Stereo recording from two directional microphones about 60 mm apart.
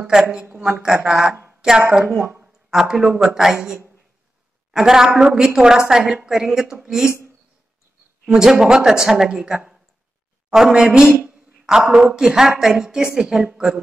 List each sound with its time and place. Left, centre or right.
0.0 s a woman's voice: centre
8.3 s a woman's voice: centre
11.1 s a sound: centre
12.1 s a woman's voice: centre